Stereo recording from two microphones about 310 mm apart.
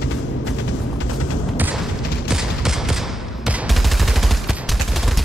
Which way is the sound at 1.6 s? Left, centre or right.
Centre.